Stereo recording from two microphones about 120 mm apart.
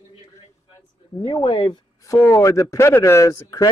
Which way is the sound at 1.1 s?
35° left (ahead or behind).